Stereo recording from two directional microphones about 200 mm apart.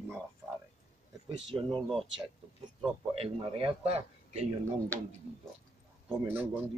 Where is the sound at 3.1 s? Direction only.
30° right (ahead or behind).